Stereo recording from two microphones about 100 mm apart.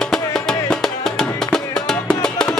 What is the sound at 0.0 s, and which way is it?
Music, 5° left (ahead or behind).